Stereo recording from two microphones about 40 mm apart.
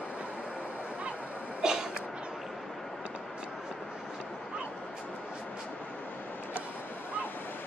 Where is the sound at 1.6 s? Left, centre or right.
Centre.